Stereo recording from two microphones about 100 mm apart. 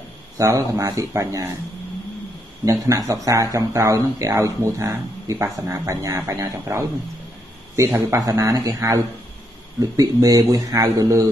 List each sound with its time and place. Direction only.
0.4 s speech: 30° right (ahead or behind)
2.6 s speech: 35° right (ahead or behind)